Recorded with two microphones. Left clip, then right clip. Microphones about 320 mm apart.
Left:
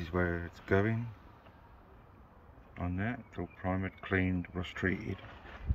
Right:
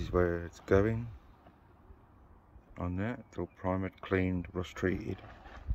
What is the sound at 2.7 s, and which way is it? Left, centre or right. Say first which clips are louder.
Speech: even; centre.